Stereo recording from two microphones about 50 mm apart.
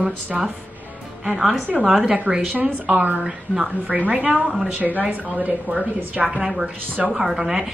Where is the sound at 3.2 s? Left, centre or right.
Centre.